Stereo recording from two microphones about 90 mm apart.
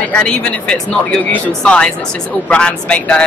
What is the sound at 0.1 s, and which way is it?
Speech, 10° left (ahead or behind).